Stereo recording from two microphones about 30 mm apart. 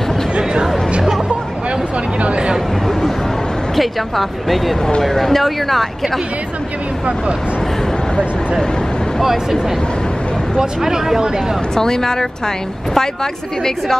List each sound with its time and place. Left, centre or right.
3.7 s a woman's voice: centre
9.2 s speech: centre
10.8 s speech: centre
11.7 s a woman's voice: centre